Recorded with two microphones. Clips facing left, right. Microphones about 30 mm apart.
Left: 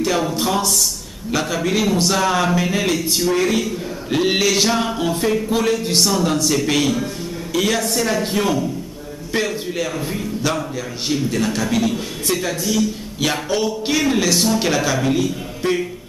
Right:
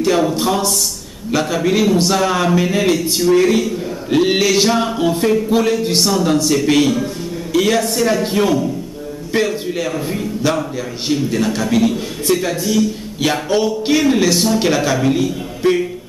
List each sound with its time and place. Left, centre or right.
0.0 s a man's voice: centre